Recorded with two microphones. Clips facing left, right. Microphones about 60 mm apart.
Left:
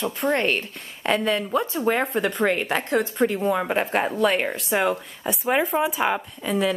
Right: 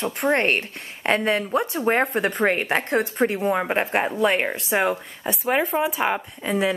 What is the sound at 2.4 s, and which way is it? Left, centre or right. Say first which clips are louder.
A woman's voice: right 2 dB; right.